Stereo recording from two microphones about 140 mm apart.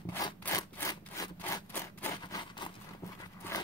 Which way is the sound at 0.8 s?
25° left (ahead or behind).